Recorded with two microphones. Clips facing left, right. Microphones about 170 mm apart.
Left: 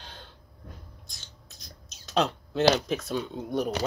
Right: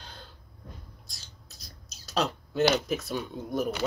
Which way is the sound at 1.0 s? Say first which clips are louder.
Left 1 dB; 35° right (ahead or behind).